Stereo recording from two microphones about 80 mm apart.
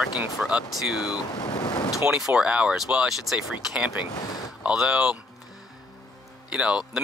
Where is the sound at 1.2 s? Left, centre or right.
Left.